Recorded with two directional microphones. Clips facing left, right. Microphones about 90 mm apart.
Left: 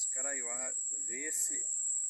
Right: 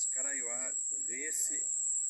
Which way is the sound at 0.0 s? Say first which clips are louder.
Left 2 dB; 10° left (ahead or behind).